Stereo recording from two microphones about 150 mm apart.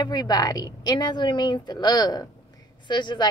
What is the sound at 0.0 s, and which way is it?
A woman's voice, 25° left (ahead or behind).